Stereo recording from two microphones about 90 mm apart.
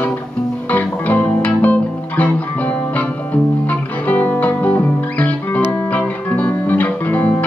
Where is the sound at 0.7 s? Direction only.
15° left (ahead or behind).